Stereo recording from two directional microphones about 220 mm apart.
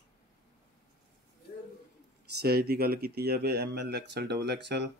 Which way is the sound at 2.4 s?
45° right (ahead or behind).